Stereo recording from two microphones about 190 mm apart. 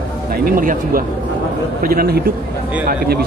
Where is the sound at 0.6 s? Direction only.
45° right (ahead or behind).